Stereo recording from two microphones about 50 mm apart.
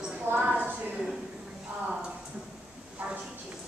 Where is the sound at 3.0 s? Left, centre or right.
Right.